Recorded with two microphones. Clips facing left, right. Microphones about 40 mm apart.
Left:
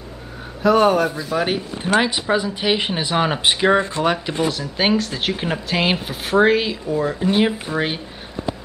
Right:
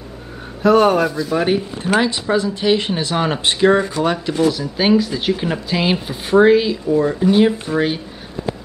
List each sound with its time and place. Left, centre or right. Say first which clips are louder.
0.6 s speech: right 2 dB; centre
7.2 s speech: right 4 dB; centre